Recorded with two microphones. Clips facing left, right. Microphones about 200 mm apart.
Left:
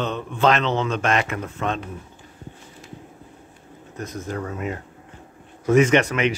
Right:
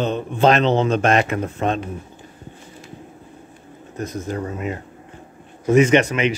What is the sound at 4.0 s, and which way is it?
Speech, 30° right (ahead or behind).